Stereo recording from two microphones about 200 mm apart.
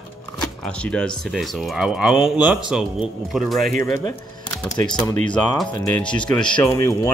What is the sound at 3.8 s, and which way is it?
Speech, 15° left (ahead or behind).